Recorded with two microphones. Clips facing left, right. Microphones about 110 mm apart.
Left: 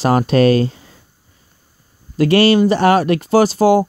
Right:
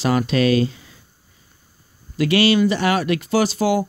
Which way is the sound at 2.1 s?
45° left (ahead or behind).